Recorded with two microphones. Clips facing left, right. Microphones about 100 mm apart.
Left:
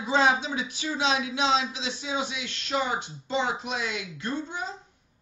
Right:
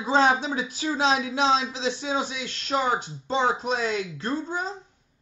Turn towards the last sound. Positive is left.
turn(degrees=-35)  # may be behind; listen again after turning